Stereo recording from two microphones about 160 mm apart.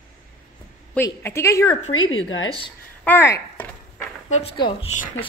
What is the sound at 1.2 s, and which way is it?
Speech, 20° left (ahead or behind).